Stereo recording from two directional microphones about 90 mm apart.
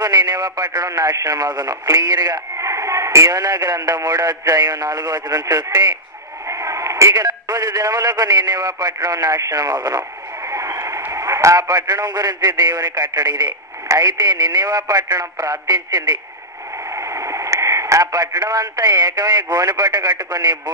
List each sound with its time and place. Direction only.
0.0 s speech: 45° right (ahead or behind)
2.5 s speech: 35° right (ahead or behind)
6.4 s speech: 35° right (ahead or behind)
10.5 s a sound: 35° right (ahead or behind)
11.1 s radio: 35° right (ahead or behind)
11.6 s speech: 50° right (ahead or behind)
16.9 s speech: 35° right (ahead or behind)